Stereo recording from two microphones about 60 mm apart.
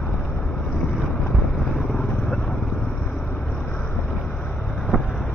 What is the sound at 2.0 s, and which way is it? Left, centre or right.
Vehicle, left.